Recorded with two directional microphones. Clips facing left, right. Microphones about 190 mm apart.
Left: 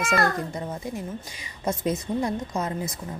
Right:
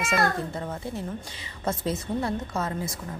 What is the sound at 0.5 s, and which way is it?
A woman's voice, 15° left (ahead or behind).